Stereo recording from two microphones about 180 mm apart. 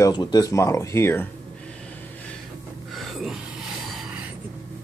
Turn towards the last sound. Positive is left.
turn(degrees=0)  # may be behind; listen again after turning